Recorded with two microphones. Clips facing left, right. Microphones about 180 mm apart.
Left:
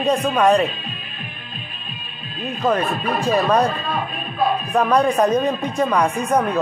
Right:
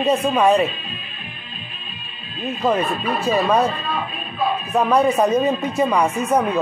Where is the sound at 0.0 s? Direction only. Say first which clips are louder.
Even; 5° right (ahead or behind).